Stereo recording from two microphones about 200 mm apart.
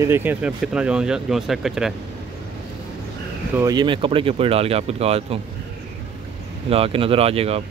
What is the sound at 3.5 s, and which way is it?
Speech, 20° right (ahead or behind).